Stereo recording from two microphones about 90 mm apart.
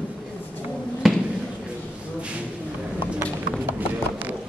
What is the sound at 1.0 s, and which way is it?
Basketball bounce, centre (ahead or behind).